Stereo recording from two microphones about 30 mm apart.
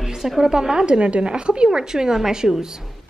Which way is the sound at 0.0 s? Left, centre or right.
Centre.